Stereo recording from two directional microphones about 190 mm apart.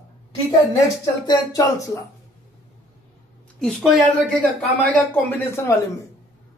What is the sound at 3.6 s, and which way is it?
Speech, centre (ahead or behind).